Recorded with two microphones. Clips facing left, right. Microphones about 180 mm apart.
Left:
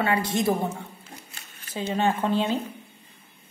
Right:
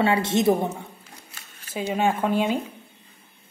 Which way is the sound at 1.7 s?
10° right (ahead or behind).